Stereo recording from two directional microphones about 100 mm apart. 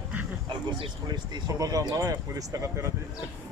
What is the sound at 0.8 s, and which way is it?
Speech, 45° right (ahead or behind).